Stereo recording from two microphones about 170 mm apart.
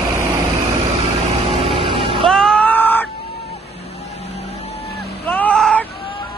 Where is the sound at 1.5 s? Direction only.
35° right (ahead or behind).